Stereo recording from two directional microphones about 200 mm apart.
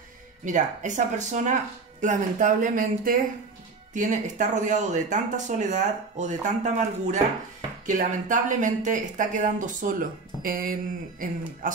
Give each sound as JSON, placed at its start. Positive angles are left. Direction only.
{"t": 0.5, "sound": "speech", "side_deg": -40}